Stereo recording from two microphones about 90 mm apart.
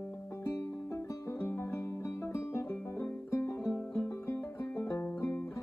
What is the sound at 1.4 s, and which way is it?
Music, 25° left (ahead or behind).